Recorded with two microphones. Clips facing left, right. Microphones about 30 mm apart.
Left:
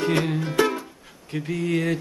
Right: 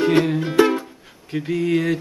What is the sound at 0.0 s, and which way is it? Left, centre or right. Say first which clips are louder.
Music: right 6 dB; centre.